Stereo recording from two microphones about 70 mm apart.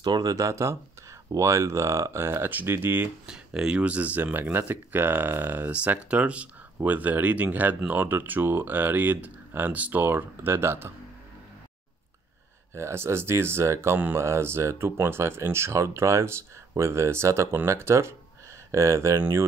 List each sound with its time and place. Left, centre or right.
0.0 s speech: right
3.3 s speech: centre; by 10.9 s right
12.7 s speech: right